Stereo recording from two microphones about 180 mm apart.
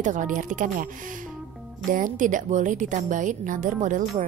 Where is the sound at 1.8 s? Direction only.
45° right (ahead or behind).